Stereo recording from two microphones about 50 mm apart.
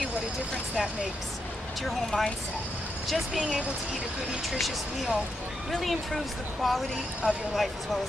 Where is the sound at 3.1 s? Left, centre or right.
Centre.